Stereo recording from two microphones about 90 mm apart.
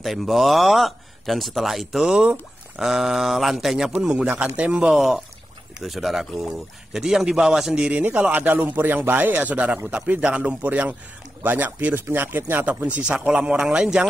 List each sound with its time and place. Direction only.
0.0 s speech: centre (ahead or behind)